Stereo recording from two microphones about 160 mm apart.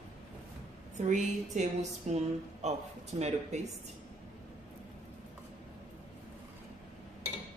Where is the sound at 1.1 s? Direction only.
50° right (ahead or behind).